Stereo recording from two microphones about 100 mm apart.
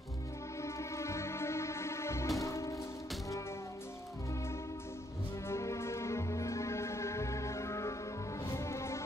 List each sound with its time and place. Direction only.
0.6 s music: 30° left (ahead or behind)
5.5 s music: 30° left (ahead or behind)